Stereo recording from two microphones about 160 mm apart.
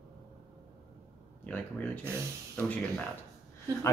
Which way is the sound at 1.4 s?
10° left (ahead or behind).